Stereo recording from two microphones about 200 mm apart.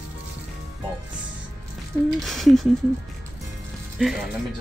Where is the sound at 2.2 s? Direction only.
Centre (ahead or behind).